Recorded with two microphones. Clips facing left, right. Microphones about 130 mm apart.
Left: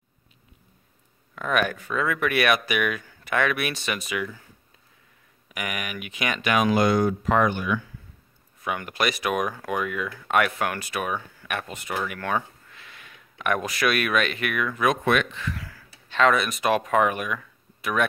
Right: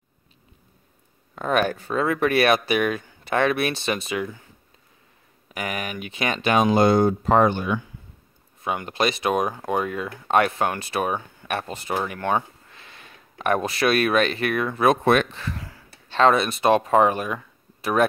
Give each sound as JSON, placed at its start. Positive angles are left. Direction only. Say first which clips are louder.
{"t": 1.3, "sound": "speech", "louder": "right 3 dB", "side_deg": -30}
{"t": 5.5, "sound": "speech", "louder": "right 3 dB", "side_deg": -30}